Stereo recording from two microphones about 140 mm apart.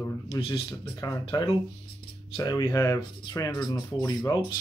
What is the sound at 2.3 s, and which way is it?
Speech, 30° left (ahead or behind).